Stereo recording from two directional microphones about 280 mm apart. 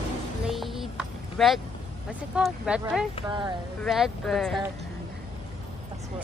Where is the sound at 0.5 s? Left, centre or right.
Centre.